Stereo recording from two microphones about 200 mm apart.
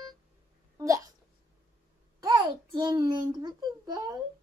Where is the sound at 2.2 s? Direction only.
20° right (ahead or behind).